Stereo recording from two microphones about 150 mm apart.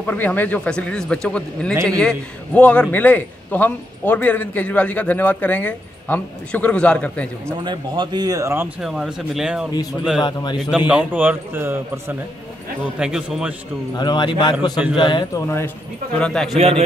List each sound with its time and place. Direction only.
0.0 s a man's voice: 10° left (ahead or behind)
7.6 s speech: 30° right (ahead or behind)
8.8 s speech: centre (ahead or behind)
10.2 s speech: 30° left (ahead or behind)
10.9 s a man's voice: 10° right (ahead or behind)
13.9 s speech: 30° left (ahead or behind)
16.2 s speech: 5° left (ahead or behind)
16.5 s a man's voice: 45° right (ahead or behind)